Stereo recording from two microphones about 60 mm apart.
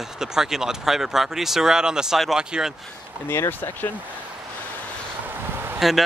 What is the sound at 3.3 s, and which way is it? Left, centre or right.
Speech, left.